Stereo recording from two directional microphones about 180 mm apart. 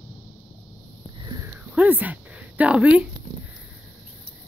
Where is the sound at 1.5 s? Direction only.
10° right (ahead or behind).